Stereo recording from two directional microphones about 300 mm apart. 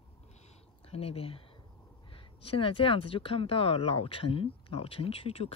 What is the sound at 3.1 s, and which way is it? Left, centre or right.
Speech, centre.